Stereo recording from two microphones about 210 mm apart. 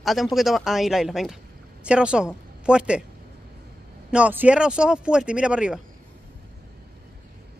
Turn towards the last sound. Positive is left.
turn(degrees=-5)  # may be behind; listen again after turning